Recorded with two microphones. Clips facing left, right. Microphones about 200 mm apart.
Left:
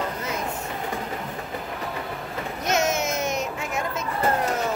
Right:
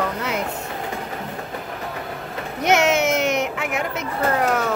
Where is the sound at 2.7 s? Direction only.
70° right (ahead or behind).